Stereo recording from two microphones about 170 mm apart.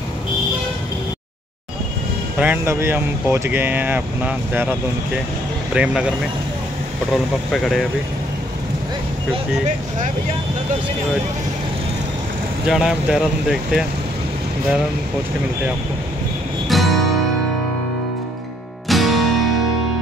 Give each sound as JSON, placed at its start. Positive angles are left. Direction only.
{"t": 2.3, "sound": "speech", "side_deg": -10}
{"t": 7.5, "sound": "speech", "side_deg": 0}
{"t": 12.6, "sound": "speech", "side_deg": 0}
{"t": 16.6, "sound": "music", "side_deg": 0}
{"t": 18.9, "sound": "music", "side_deg": 0}